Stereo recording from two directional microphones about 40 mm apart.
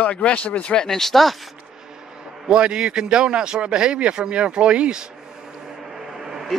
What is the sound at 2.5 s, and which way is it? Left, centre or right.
Speech, right.